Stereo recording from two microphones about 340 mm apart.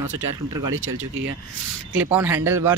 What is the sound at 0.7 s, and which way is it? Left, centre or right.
Speech, right.